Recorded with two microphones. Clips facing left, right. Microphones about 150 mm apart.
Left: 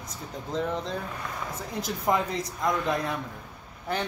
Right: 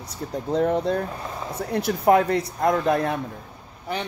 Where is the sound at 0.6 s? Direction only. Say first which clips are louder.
Right 8 dB; 55° right (ahead or behind).